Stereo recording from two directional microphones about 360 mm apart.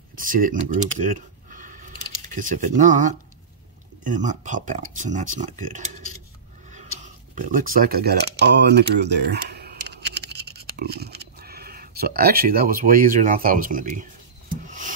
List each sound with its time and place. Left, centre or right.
0.1 s speech: right
1.0 s a sound: right
4.1 s speech: right
7.3 s speech: right